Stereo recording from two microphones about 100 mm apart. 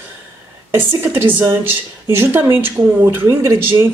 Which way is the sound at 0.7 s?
20° right (ahead or behind).